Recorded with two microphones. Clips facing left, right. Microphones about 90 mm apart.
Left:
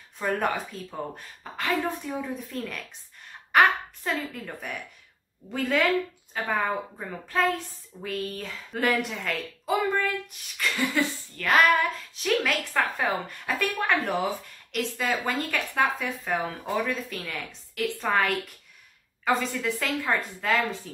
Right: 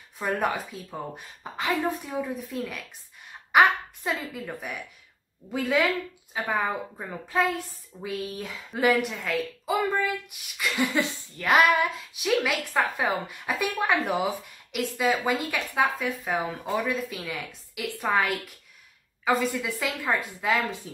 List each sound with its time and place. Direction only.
0.2 s a child's voice: 5° right (ahead or behind)
9.0 s speech: 5° right (ahead or behind)
10.6 s a child's voice: 20° right (ahead or behind)